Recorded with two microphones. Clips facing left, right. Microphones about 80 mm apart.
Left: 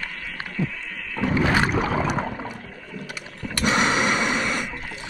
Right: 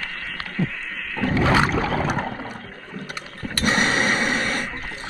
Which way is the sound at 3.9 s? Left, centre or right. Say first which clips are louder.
Even; right.